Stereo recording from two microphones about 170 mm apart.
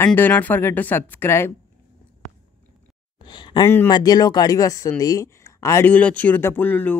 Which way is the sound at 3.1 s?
25° left (ahead or behind).